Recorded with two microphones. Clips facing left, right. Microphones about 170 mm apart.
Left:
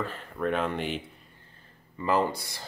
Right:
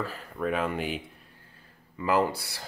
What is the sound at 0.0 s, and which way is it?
Speech, 5° right (ahead or behind).